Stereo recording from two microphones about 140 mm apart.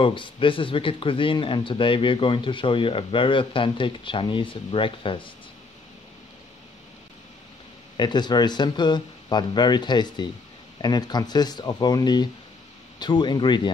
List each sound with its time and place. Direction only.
0.0 s speech: 40° left (ahead or behind)
8.0 s speech: 30° left (ahead or behind)